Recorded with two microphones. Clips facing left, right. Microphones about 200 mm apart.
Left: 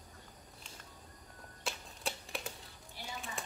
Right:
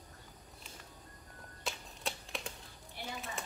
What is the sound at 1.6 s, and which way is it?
Typewriter, centre (ahead or behind).